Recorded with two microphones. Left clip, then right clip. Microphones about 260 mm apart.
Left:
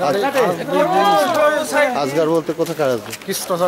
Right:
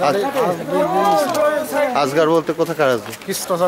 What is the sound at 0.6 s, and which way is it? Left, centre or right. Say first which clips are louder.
Speech: left 2 dB; centre.